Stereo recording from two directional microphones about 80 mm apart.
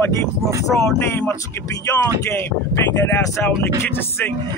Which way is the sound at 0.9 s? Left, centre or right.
Left.